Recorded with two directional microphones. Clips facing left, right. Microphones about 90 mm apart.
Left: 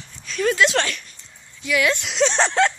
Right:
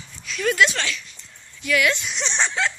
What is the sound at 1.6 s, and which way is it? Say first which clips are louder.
Speech: left 1 dB; 20° left (ahead or behind).